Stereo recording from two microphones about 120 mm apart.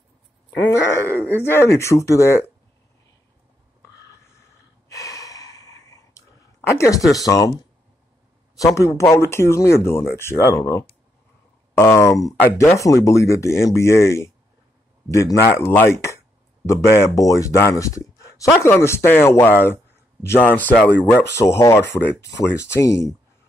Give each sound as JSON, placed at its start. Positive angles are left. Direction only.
{"t": 0.7, "sound": "speech", "side_deg": 20}
{"t": 4.8, "sound": "gasp", "side_deg": 25}
{"t": 7.0, "sound": "speech", "side_deg": 0}
{"t": 7.2, "sound": "speech", "side_deg": 30}
{"t": 8.5, "sound": "speech", "side_deg": 25}